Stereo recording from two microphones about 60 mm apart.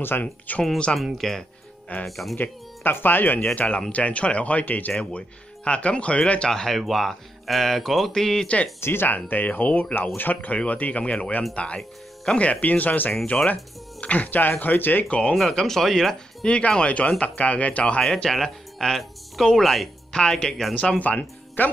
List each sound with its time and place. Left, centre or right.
0.0 s speech: left
0.9 s speech: centre
2.3 s speech: left
3.5 s speech: left
6.5 s speech: centre
8.8 s speech: left
9.1 s speech: left
15.0 s speech: centre
15.3 s speech: centre
16.4 s speech: centre
18.0 s speech: centre
20.1 s speech: centre
21.0 s speech: left